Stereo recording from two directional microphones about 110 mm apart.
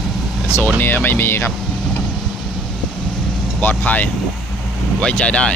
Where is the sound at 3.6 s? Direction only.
15° left (ahead or behind).